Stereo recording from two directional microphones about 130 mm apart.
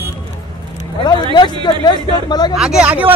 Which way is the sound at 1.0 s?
35° left (ahead or behind).